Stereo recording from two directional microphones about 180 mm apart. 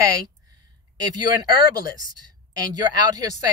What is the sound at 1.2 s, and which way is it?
Speech, 20° right (ahead or behind).